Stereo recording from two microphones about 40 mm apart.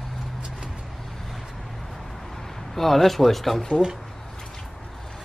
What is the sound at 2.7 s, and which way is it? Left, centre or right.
Speech, centre.